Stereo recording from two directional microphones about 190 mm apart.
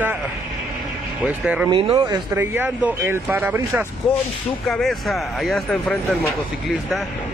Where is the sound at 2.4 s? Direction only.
10° right (ahead or behind).